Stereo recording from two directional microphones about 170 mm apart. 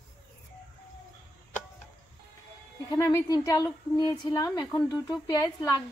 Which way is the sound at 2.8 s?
20° left (ahead or behind).